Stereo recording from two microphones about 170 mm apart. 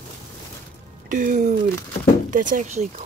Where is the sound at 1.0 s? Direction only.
55° right (ahead or behind).